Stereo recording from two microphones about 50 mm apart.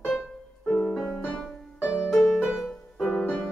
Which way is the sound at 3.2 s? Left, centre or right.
Left.